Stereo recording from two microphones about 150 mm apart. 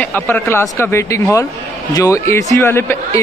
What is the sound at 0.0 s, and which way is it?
A man's voice, 10° left (ahead or behind).